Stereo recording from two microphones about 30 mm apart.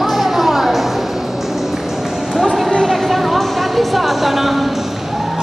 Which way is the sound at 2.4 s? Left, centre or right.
Centre.